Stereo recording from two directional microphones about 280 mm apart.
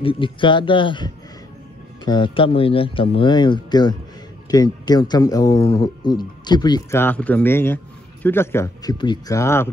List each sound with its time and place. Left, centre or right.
0.0 s speech: centre